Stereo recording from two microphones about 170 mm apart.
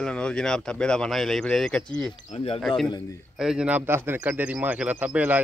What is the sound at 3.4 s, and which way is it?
Speech, 5° right (ahead or behind).